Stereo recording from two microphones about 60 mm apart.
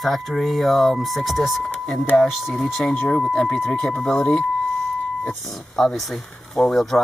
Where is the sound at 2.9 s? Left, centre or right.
Centre.